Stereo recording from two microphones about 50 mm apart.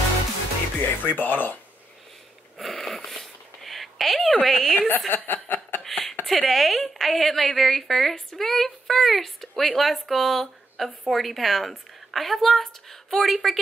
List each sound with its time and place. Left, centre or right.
0.7 s speech: left
2.5 s a sound: centre
4.4 s a woman's voice: centre
4.7 s speech: left
5.9 s a sound: centre
6.2 s a woman's voice: centre